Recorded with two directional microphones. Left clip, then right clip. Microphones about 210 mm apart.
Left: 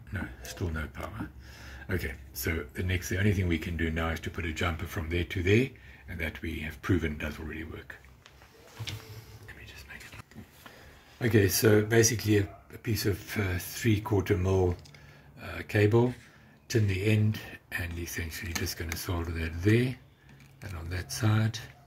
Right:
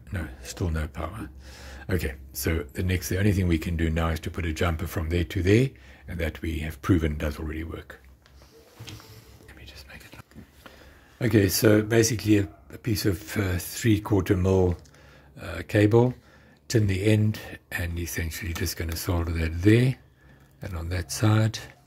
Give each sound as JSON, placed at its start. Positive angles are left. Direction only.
{"t": 0.1, "sound": "speech", "side_deg": -50}
{"t": 11.1, "sound": "speech", "side_deg": -50}